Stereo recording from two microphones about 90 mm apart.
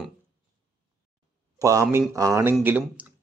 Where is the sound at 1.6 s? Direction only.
35° right (ahead or behind).